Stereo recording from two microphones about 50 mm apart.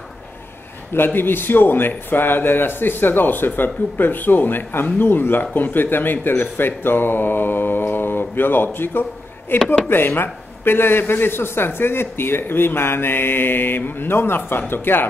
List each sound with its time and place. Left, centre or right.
0.9 s speech: left
6.2 s mantra: left
9.5 s speech: left